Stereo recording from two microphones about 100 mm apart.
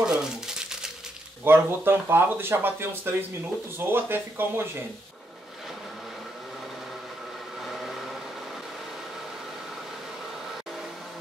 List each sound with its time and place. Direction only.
0.0 s crumpling: 5° right (ahead or behind)
1.4 s speech: 20° right (ahead or behind)